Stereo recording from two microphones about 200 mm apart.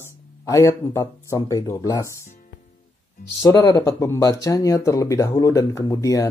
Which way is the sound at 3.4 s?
15° left (ahead or behind).